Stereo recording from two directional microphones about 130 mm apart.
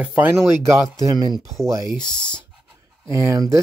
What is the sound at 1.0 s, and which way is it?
Speech, 30° right (ahead or behind).